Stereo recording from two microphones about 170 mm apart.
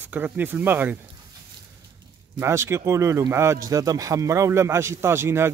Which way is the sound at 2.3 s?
15° right (ahead or behind).